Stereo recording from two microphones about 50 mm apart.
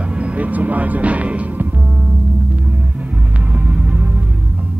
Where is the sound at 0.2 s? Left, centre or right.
Right.